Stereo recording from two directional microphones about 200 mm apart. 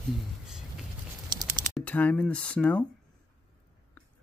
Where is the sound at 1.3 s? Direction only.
20° right (ahead or behind).